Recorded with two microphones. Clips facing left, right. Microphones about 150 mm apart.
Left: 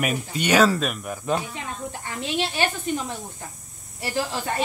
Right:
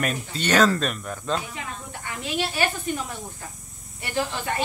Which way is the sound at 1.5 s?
30° left (ahead or behind).